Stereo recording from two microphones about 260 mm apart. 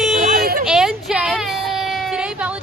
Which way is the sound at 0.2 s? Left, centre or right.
Right.